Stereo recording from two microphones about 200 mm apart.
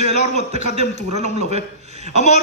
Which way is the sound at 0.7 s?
35° right (ahead or behind).